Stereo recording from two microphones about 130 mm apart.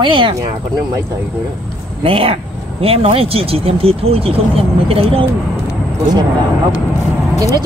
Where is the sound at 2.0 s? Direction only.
45° right (ahead or behind).